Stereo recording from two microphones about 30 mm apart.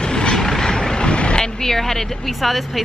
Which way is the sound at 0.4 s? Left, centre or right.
Centre.